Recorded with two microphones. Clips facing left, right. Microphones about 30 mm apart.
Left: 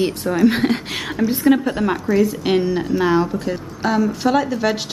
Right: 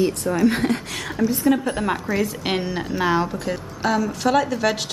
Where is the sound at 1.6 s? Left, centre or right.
Centre.